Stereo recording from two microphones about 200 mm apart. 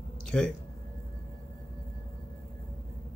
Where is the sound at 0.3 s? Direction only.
Centre (ahead or behind).